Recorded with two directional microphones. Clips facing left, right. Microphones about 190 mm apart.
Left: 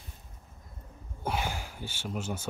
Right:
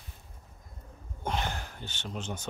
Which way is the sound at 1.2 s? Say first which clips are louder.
Even; 10° left (ahead or behind).